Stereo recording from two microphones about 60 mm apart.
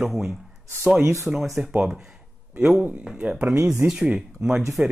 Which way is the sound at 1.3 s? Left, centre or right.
Centre.